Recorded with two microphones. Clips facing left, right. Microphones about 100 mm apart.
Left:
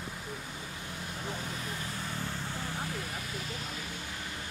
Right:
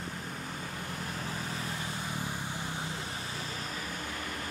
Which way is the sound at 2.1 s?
15° right (ahead or behind).